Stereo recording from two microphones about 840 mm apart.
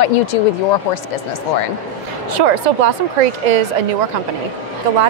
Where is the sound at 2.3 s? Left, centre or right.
Right.